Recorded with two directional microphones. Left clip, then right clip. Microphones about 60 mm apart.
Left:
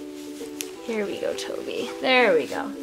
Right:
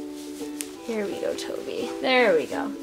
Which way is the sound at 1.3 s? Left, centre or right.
Centre.